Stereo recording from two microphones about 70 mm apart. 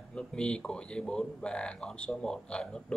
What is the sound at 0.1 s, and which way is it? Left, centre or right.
Speech, centre.